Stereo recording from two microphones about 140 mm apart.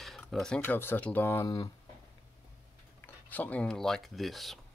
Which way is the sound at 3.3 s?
10° left (ahead or behind).